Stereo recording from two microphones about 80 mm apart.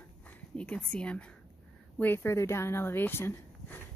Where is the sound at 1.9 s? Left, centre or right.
Left.